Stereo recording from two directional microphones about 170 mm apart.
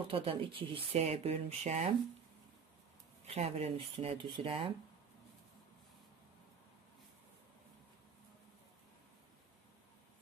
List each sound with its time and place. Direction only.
0.1 s speech: 30° right (ahead or behind)
3.3 s speech: 40° right (ahead or behind)